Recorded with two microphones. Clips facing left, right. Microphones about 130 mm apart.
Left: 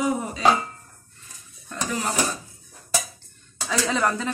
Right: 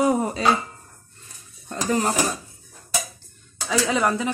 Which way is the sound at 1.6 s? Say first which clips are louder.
Right 5 dB; 35° right (ahead or behind).